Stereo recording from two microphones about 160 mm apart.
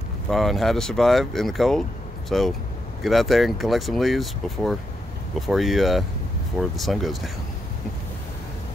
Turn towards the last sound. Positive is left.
turn(degrees=0)  # may be behind; listen again after turning